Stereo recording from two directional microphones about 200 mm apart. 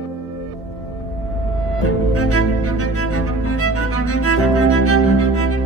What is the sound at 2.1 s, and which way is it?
Music, 90° left.